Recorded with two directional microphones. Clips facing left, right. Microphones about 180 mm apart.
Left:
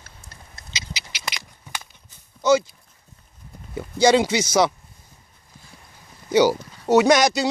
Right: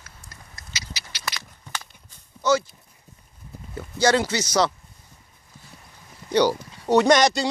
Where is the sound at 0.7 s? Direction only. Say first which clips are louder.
Left 3 dB; 15° left (ahead or behind).